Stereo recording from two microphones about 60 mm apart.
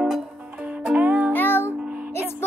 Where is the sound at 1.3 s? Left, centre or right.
Left.